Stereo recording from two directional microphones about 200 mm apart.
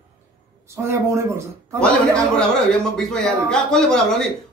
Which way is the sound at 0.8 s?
15° right (ahead or behind).